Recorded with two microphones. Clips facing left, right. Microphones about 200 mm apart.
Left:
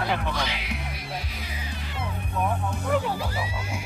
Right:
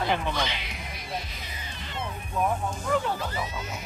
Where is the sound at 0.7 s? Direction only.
65° left (ahead or behind).